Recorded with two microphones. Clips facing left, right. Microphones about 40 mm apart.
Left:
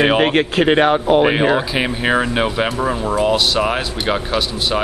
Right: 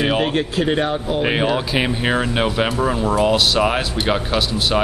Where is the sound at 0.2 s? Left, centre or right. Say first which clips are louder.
Left 4 dB; left.